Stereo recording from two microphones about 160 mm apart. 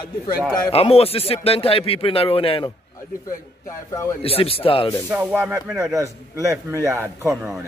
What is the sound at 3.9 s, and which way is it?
Speech, 20° left (ahead or behind).